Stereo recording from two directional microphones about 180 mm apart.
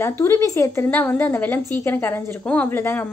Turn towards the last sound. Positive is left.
turn(degrees=10)  # may be behind; listen again after turning